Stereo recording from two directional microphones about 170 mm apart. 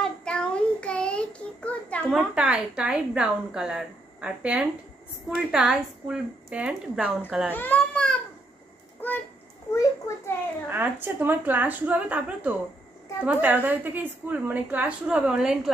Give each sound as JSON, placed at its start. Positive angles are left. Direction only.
{"t": 0.0, "sound": "child singing", "side_deg": 5}
{"t": 2.1, "sound": "a woman's voice", "side_deg": -10}
{"t": 7.5, "sound": "a child's voice", "side_deg": 10}
{"t": 9.7, "sound": "a child's voice", "side_deg": 15}
{"t": 10.7, "sound": "a woman's voice", "side_deg": -10}